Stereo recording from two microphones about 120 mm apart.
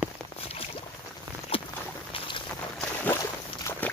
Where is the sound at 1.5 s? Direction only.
50° left (ahead or behind).